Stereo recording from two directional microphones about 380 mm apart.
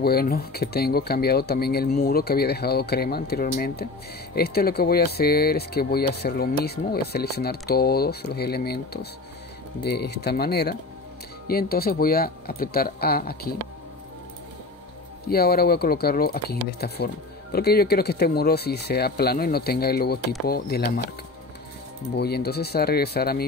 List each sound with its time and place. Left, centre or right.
0.0 s speech: left
15.2 s speech: left
22.1 s speech: left